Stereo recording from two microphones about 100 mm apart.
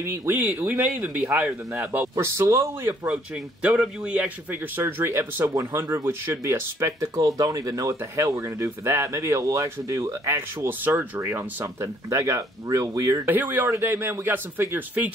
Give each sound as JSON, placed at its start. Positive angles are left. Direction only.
{"t": 0.0, "sound": "a man's voice", "side_deg": -25}
{"t": 1.7, "sound": "a man's voice", "side_deg": -30}
{"t": 3.6, "sound": "a man's voice", "side_deg": -15}
{"t": 13.3, "sound": "a man's voice", "side_deg": -20}